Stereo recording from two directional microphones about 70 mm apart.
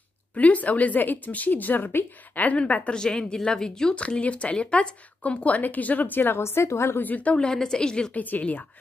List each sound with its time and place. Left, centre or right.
0.4 s speech: left
7.0 s speech: left